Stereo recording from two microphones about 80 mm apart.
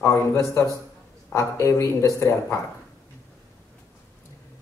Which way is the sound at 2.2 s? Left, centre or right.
Left.